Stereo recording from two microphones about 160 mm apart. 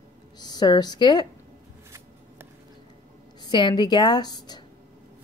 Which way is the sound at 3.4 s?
30° left (ahead or behind).